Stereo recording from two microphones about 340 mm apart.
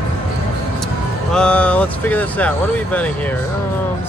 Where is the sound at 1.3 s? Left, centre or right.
Centre.